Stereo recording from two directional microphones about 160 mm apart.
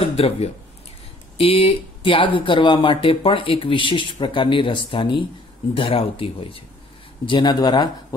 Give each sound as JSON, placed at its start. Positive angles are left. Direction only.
{"t": 0.1, "sound": "speech", "side_deg": 40}